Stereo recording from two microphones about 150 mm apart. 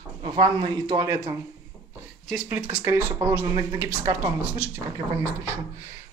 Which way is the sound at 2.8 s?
15° right (ahead or behind).